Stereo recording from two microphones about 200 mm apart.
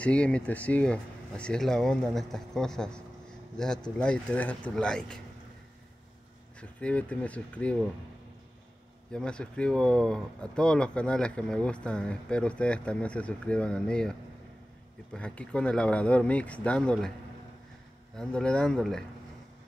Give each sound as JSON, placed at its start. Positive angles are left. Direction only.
{"t": 0.0, "sound": "speech", "side_deg": 5}
{"t": 6.6, "sound": "speech", "side_deg": 5}
{"t": 9.1, "sound": "speech", "side_deg": 5}
{"t": 15.1, "sound": "speech", "side_deg": 5}
{"t": 18.1, "sound": "speech", "side_deg": 5}